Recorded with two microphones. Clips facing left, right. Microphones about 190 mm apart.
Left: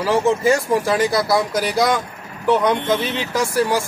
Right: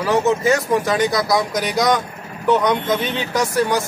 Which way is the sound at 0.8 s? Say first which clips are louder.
Even; 5° left (ahead or behind).